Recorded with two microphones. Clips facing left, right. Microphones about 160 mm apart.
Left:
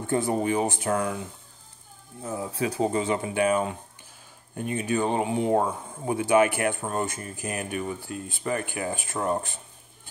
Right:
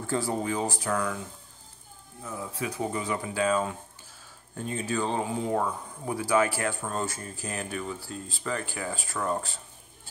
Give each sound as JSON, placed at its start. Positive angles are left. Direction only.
{"t": 0.0, "sound": "speech", "side_deg": 20}
{"t": 2.2, "sound": "speech", "side_deg": 30}
{"t": 5.5, "sound": "speech", "side_deg": 35}
{"t": 6.0, "sound": "speech", "side_deg": 20}